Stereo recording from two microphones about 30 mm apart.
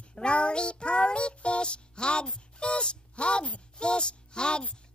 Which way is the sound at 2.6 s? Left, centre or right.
Left.